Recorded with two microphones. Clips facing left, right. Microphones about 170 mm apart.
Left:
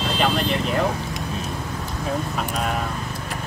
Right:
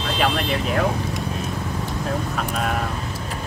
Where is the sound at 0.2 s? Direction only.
5° right (ahead or behind).